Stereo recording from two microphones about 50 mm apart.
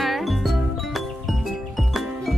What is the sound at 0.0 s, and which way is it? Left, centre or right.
Music, centre.